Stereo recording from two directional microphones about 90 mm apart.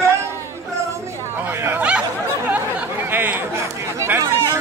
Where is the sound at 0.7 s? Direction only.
25° right (ahead or behind).